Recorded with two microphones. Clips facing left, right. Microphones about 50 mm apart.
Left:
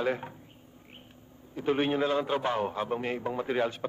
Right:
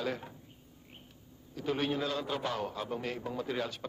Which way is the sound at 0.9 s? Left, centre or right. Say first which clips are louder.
Left 2 dB; left.